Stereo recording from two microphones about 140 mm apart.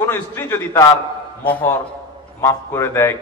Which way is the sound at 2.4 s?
20° left (ahead or behind).